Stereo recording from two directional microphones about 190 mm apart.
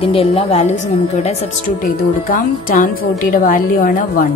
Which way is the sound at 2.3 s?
50° left (ahead or behind).